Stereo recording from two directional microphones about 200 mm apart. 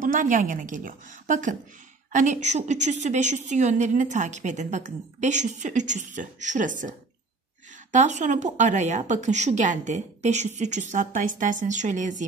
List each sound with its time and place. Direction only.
0.0 s a woman's voice: 40° right (ahead or behind)